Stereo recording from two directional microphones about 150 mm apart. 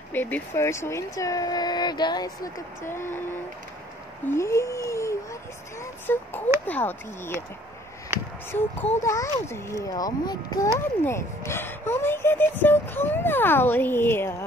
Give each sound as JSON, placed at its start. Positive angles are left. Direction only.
{"t": 0.1, "sound": "speech", "side_deg": 15}
{"t": 4.3, "sound": "speech", "side_deg": 20}
{"t": 8.5, "sound": "speech", "side_deg": 15}